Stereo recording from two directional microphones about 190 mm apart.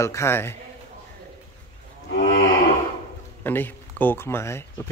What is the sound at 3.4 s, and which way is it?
Speech, 10° left (ahead or behind).